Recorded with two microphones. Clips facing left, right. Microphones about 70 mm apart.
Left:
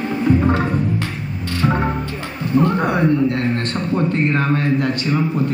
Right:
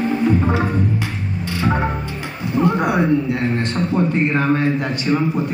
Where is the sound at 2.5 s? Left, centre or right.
Centre.